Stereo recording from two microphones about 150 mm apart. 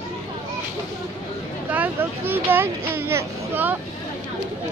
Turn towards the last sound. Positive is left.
turn(degrees=-15)  # may be behind; listen again after turning